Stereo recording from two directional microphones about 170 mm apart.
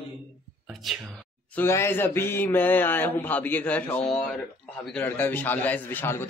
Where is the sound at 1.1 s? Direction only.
10° left (ahead or behind).